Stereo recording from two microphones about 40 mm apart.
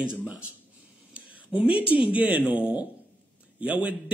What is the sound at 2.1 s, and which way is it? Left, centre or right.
A man's voice, right.